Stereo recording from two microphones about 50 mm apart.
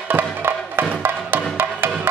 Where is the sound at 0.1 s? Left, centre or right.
Right.